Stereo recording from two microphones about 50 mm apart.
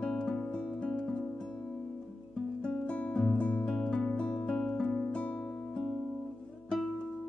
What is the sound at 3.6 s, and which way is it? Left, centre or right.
Music, centre.